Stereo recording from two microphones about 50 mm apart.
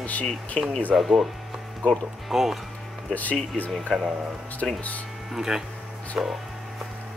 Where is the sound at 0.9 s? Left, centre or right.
Centre.